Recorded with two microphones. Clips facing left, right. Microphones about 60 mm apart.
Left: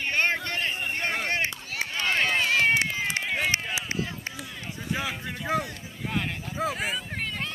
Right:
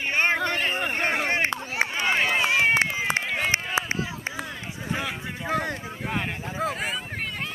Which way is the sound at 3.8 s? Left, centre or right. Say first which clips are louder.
Right 7 dB; right.